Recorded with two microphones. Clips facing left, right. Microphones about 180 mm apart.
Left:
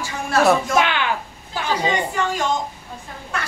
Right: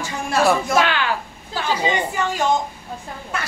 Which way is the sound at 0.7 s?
20° left (ahead or behind).